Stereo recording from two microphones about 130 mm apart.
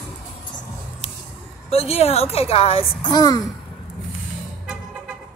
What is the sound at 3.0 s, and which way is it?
Speech, 30° left (ahead or behind).